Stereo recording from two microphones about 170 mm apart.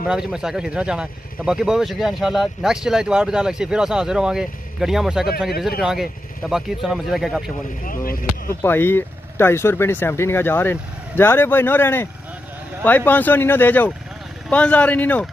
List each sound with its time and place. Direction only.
0.0 s speech: 5° right (ahead or behind)
7.8 s speech: 55° left (ahead or behind)
8.6 s speech: 10° left (ahead or behind)